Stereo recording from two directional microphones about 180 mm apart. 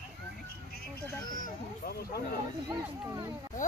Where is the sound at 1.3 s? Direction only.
55° left (ahead or behind).